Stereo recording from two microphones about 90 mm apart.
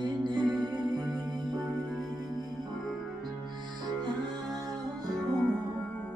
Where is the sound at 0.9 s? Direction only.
50° right (ahead or behind).